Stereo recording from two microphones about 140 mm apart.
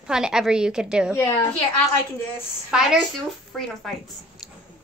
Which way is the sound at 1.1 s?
20° left (ahead or behind).